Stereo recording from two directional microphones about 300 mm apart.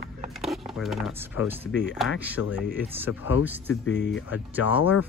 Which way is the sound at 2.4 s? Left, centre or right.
Left.